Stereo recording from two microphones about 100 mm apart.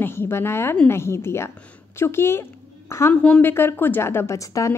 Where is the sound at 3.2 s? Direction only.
15° left (ahead or behind); by 4.7 s 35° left (ahead or behind).